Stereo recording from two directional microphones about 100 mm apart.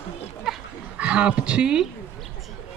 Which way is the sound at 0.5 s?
10° right (ahead or behind).